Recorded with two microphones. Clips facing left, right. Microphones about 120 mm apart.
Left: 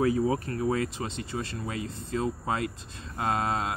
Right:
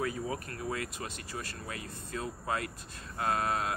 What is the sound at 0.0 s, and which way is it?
Speech, 30° left (ahead or behind).